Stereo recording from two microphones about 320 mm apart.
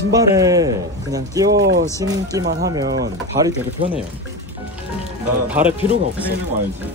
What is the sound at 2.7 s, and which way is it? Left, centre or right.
A man's voice, centre.